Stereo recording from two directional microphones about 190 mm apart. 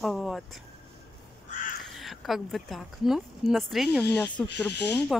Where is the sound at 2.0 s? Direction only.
Centre (ahead or behind).